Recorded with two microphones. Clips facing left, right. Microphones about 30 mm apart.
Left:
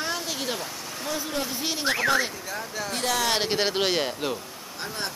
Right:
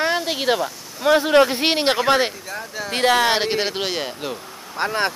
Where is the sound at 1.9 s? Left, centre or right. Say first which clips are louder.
Right 5 dB; right.